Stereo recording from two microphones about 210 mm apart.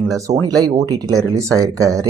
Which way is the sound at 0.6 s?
15° right (ahead or behind).